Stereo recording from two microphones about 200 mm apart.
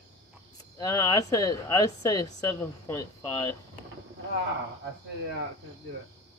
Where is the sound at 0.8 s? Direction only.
20° left (ahead or behind).